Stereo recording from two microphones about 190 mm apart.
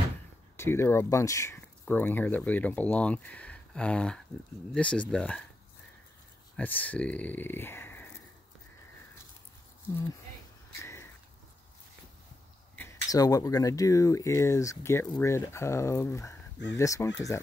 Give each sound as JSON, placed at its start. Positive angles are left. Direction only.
{"t": 0.6, "sound": "speech", "side_deg": 10}
{"t": 6.5, "sound": "speech", "side_deg": 10}
{"t": 10.8, "sound": "a sound", "side_deg": 15}
{"t": 12.7, "sound": "speech", "side_deg": 15}